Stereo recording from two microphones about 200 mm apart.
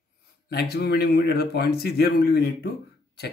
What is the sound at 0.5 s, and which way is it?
Speech, 50° left (ahead or behind).